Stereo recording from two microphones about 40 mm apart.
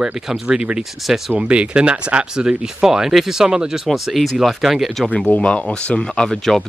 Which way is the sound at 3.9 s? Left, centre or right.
Centre.